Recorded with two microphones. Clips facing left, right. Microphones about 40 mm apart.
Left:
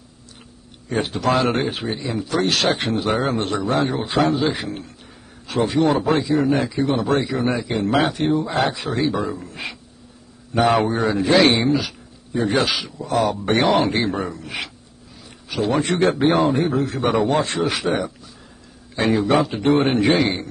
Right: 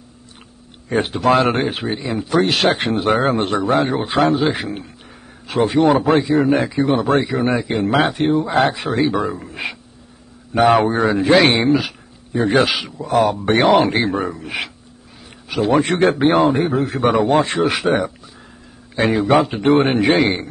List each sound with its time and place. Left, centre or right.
0.8 s speech: right